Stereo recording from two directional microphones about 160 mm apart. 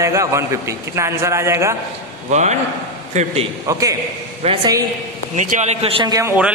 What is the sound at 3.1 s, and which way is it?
Speech, 45° right (ahead or behind).